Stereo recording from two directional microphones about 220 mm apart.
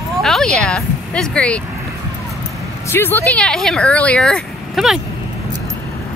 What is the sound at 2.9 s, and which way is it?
Speech, 10° left (ahead or behind).